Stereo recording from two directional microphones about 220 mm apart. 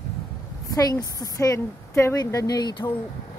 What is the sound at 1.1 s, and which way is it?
Speech, 15° left (ahead or behind).